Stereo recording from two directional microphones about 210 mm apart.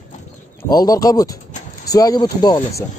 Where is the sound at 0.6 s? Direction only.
20° left (ahead or behind).